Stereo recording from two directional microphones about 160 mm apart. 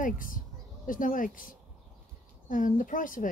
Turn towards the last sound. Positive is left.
turn(degrees=55)  # may be behind; listen again after turning